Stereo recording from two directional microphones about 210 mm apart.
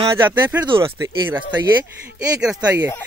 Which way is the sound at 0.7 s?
25° right (ahead or behind).